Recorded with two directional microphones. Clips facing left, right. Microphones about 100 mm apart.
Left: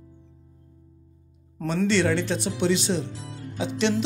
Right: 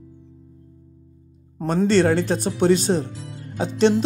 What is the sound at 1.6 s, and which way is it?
Speech, 45° right (ahead or behind).